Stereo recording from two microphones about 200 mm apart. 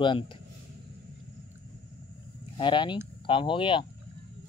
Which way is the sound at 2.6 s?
25° left (ahead or behind).